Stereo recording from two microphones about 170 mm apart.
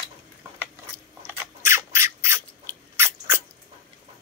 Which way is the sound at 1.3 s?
15° right (ahead or behind).